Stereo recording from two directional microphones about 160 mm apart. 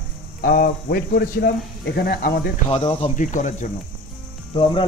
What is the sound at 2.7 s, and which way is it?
Speech, 35° left (ahead or behind).